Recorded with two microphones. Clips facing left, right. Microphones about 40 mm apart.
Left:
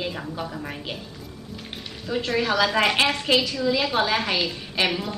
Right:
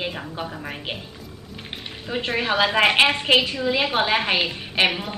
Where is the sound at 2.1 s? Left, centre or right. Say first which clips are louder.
Even; right.